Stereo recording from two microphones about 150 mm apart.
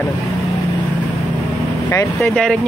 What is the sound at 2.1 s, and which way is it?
Speech, 5° left (ahead or behind).